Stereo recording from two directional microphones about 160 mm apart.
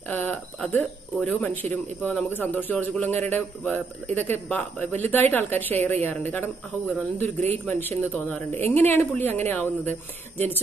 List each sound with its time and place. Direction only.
0.1 s a man's voice: 10° left (ahead or behind)